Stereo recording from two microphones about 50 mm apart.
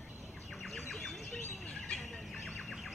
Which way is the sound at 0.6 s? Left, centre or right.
Centre.